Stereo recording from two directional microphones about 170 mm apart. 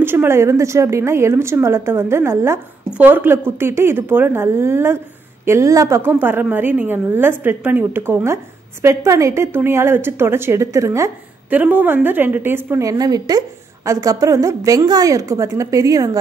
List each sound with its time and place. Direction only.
0.0 s a woman's voice: 10° right (ahead or behind)